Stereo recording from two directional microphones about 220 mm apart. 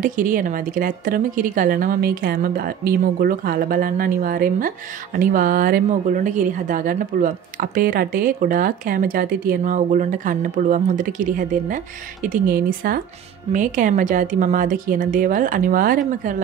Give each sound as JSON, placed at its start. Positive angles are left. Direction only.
{"t": 0.0, "sound": "a woman's voice", "side_deg": -35}